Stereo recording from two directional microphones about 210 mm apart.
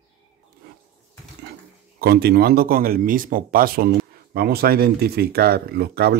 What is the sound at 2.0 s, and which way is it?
Speech, 50° right (ahead or behind).